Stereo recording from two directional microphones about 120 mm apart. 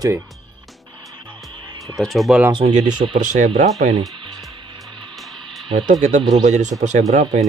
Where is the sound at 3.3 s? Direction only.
75° right (ahead or behind).